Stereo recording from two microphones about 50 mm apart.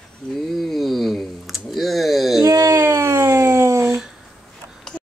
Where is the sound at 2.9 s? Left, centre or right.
Right.